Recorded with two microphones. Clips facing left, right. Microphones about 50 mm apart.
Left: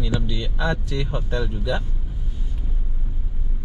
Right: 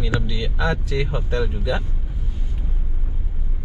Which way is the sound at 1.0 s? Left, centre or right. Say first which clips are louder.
Right 3 dB; centre.